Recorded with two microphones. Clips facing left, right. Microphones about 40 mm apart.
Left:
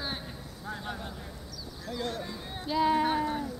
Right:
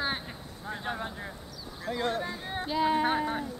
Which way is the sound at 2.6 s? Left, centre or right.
Centre.